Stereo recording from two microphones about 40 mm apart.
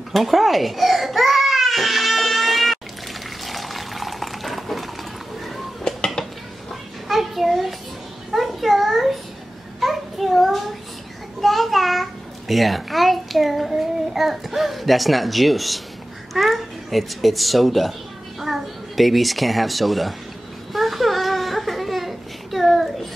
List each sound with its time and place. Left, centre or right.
0.1 s crying: centre
3.4 s water: centre
5.9 s a sound: centre
7.1 s children playing: centre
8.3 s a sound: centre
11.4 s a child's voice: centre
20.7 s baby cry: centre